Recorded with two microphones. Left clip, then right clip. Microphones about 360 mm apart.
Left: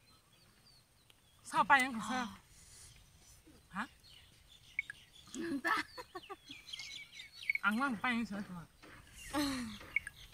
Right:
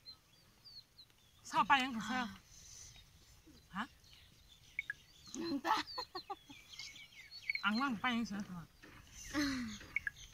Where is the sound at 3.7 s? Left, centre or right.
Centre.